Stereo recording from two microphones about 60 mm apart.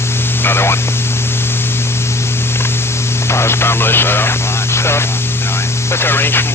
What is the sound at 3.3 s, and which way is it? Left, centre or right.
Speech, left.